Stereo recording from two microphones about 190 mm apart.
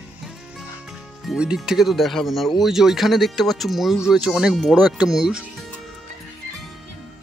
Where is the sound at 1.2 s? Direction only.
5° right (ahead or behind).